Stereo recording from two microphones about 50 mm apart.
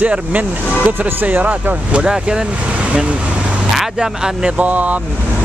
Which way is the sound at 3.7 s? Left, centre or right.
Centre.